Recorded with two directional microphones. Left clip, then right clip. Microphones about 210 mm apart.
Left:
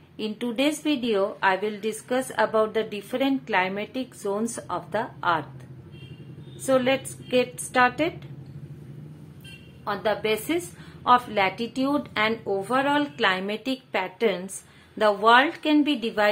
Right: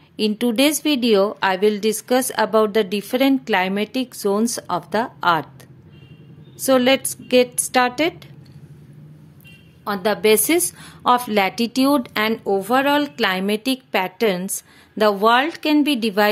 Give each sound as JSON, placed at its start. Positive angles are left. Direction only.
{"t": 0.2, "sound": "a woman's voice", "side_deg": -50}
{"t": 6.6, "sound": "a woman's voice", "side_deg": -50}
{"t": 9.8, "sound": "a woman's voice", "side_deg": -55}